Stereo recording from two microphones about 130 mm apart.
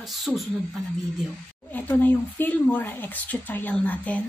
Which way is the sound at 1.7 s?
15° left (ahead or behind).